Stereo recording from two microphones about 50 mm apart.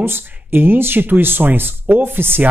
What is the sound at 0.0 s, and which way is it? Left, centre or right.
Speech, right.